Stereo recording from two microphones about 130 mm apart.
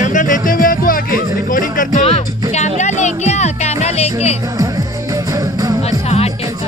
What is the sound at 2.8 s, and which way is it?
Music, 65° left (ahead or behind).